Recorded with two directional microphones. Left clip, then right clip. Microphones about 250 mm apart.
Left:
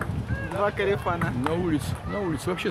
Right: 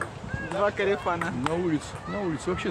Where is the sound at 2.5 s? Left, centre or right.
Left.